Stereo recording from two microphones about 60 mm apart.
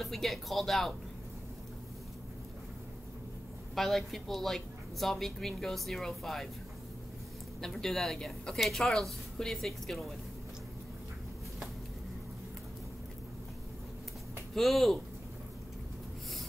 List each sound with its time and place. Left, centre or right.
0.0 s a woman's voice: centre
3.7 s a woman's voice: centre
7.6 s a woman's voice: centre
14.5 s a woman's voice: centre